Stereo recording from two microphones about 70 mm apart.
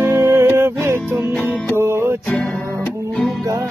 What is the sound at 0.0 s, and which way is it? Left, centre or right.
Music, right.